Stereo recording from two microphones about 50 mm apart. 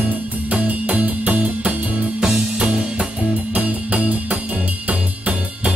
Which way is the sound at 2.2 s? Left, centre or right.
Centre.